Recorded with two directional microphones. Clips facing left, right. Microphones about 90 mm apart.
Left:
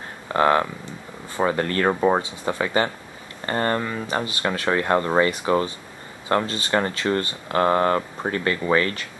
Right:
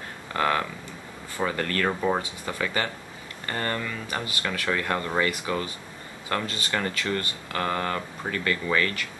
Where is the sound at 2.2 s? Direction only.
25° left (ahead or behind).